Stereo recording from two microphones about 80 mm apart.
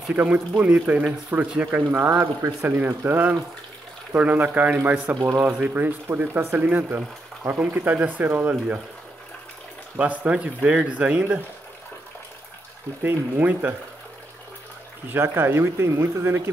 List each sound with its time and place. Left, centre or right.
0.1 s speech: centre
9.9 s speech: centre
13.0 s speech: right
15.0 s speech: right